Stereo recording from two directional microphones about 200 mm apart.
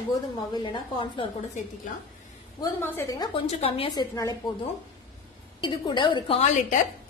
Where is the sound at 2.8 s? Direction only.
15° left (ahead or behind).